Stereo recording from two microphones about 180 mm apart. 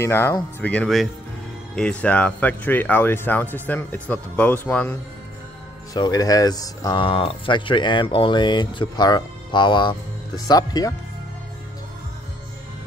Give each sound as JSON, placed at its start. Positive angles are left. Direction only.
{"t": 0.0, "sound": "speech", "side_deg": 15}
{"t": 5.9, "sound": "speech", "side_deg": 20}